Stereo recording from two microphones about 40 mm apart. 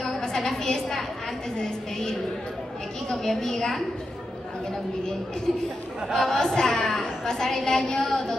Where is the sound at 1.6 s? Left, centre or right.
Centre.